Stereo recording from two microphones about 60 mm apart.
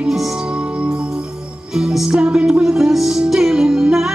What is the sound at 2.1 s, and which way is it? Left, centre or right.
Music, centre.